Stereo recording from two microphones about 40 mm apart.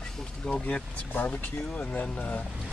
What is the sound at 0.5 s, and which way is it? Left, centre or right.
Speech, left.